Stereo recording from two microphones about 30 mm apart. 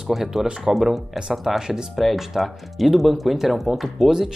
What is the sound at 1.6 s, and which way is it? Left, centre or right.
Speech, right.